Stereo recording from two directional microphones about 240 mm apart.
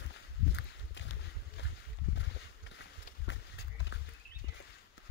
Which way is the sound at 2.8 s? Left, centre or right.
Left.